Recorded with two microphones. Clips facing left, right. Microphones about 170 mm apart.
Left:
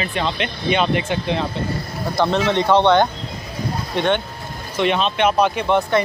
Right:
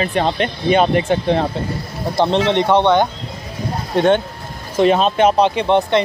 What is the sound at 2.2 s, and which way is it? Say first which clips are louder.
Speech: right 3 dB; 25° right (ahead or behind).